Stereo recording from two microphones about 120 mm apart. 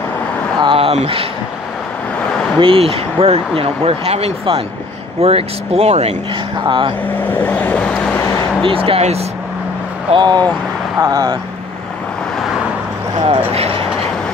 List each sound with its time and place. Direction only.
0.6 s a sound: 45° right (ahead or behind)
2.6 s speech: 50° right (ahead or behind)
6.6 s speech: 45° right (ahead or behind)
7.2 s vehicle: 15° left (ahead or behind)
8.6 s speech: 50° right (ahead or behind)
10.1 s speech: 35° right (ahead or behind)
13.2 s speech: 55° right (ahead or behind)